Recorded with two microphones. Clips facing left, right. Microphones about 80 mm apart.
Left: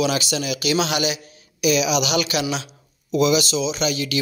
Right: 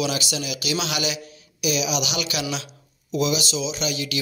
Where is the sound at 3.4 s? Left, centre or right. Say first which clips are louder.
Left 4 dB; left.